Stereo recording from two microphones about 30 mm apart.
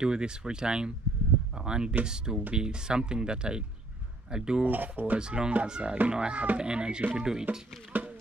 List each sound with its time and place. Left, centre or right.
0.0 s speech: right
1.5 s a sound: right
2.0 s speech: right
4.6 s speech: right
5.2 s a child's voice: right
7.9 s a sound: right